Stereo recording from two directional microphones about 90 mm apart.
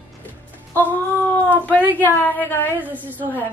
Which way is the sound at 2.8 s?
20° right (ahead or behind).